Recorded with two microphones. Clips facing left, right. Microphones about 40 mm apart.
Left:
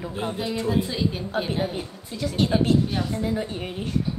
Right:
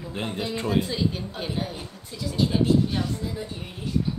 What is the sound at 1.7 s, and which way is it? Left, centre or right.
A woman's voice, left.